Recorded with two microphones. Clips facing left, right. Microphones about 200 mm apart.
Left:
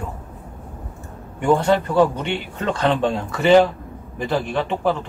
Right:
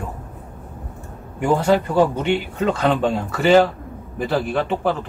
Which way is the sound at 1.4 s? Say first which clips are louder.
Even; 5° right (ahead or behind).